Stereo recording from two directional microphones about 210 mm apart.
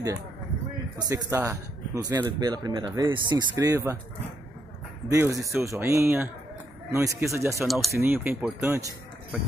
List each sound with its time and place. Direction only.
0.9 s speech: 15° right (ahead or behind)
5.1 s speech: 15° right (ahead or behind)
7.6 s speech: centre (ahead or behind)